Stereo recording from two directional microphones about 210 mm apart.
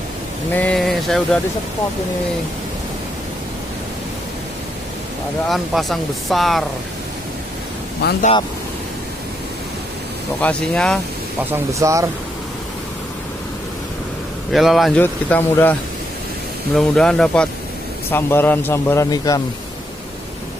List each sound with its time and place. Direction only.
0.5 s speech: 5° left (ahead or behind)
5.5 s speech: centre (ahead or behind)
8.0 s speech: 50° left (ahead or behind)
10.4 s speech: 5° left (ahead or behind)
11.5 s speech: 15° right (ahead or behind)
14.5 s speech: centre (ahead or behind)
16.7 s speech: centre (ahead or behind)